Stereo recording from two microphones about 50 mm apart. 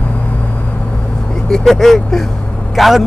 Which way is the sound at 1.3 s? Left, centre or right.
Centre.